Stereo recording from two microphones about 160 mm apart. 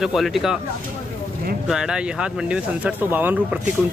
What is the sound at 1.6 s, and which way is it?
Speech, 5° right (ahead or behind).